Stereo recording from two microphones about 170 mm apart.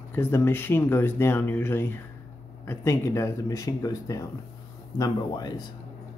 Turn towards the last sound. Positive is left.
turn(degrees=25)  # may be behind; listen again after turning